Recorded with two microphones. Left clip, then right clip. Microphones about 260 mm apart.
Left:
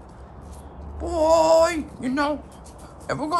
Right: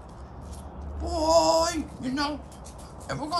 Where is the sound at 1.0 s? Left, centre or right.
Centre.